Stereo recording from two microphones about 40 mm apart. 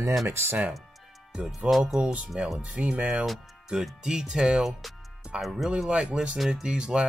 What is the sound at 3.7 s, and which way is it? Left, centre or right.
Speech, centre.